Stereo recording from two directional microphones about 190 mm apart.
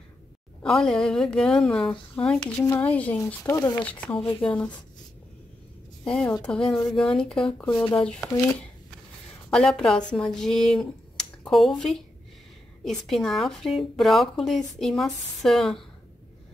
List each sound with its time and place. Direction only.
0.7 s speech: centre (ahead or behind)
2.4 s speech: 20° left (ahead or behind)
2.8 s speech: 5° left (ahead or behind)
6.0 s speech: 5° left (ahead or behind)
7.7 s speech: 15° left (ahead or behind)
8.0 s speech: 5° left (ahead or behind)